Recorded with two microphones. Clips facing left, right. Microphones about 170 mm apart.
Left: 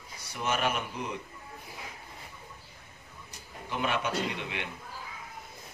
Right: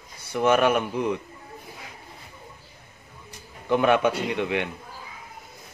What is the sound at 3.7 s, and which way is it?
Speech, 60° right (ahead or behind).